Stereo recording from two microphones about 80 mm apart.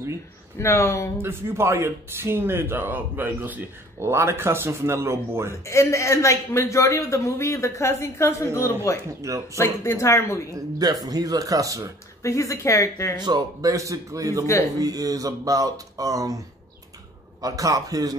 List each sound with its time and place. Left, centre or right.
0.6 s a man's voice: left
1.2 s speech: right
5.7 s a man's voice: left
9.2 s speech: right
9.6 s a man's voice: left
10.5 s speech: right
12.2 s a man's voice: left
13.2 s speech: right
17.4 s speech: right